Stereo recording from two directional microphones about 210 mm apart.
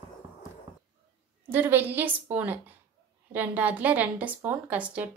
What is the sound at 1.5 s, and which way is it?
A woman's voice, 10° right (ahead or behind).